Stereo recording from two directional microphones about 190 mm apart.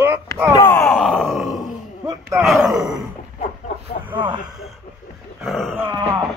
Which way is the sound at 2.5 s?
Centre (ahead or behind).